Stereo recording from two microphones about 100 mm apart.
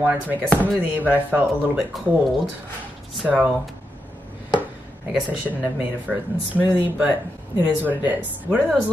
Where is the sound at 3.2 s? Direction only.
15° right (ahead or behind).